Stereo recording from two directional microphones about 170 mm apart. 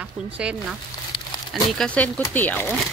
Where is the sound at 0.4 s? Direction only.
5° right (ahead or behind).